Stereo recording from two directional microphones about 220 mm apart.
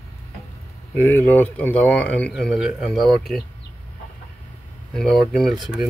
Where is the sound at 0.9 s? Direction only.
10° left (ahead or behind).